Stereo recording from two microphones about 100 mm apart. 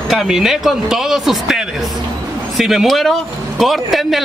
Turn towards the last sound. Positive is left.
turn(degrees=0)  # may be behind; listen again after turning